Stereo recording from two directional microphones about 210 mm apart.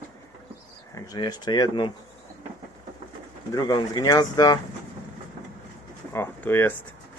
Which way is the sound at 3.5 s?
20° left (ahead or behind).